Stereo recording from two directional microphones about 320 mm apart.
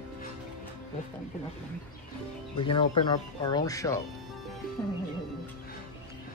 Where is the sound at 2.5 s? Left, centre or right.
Centre.